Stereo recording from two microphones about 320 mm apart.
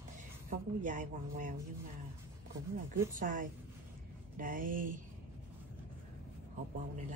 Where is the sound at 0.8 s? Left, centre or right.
Right.